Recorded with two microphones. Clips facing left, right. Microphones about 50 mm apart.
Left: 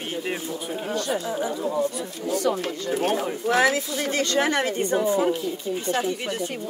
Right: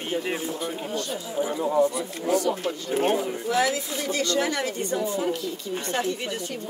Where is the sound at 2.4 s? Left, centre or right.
Left.